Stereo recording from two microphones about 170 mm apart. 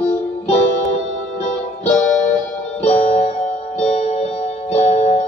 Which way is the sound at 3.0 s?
35° left (ahead or behind).